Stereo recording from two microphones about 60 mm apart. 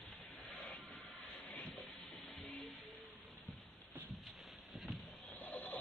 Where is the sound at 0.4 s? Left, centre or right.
Left.